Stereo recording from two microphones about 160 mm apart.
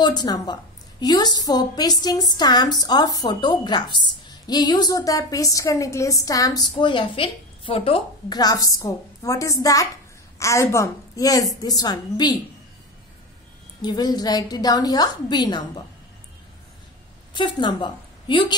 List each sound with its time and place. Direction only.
0.0 s a woman's voice: 25° left (ahead or behind)
8.3 s a woman's voice: 25° left (ahead or behind)
13.8 s a woman's voice: 25° left (ahead or behind)
17.3 s a woman's voice: 30° left (ahead or behind)